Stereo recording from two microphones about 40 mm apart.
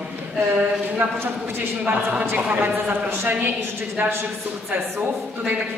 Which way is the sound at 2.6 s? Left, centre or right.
Right.